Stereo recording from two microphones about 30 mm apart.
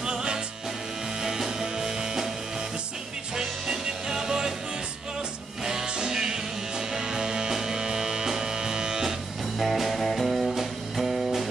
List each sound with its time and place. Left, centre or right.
0.0 s music: right
3.3 s music: centre
5.6 s music: right
9.6 s music: centre